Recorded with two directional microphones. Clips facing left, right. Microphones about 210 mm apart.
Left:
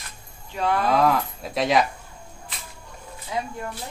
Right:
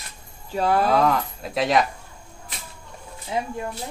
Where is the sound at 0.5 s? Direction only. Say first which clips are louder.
Right 3 dB; 40° right (ahead or behind).